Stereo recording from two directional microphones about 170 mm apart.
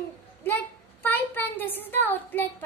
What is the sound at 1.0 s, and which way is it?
Child singing, 10° left (ahead or behind).